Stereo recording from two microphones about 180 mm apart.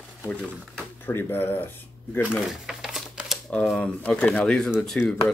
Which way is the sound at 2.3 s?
Centre (ahead or behind).